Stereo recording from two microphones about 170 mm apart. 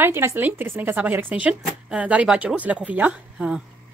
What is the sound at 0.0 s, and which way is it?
Speech, 15° right (ahead or behind).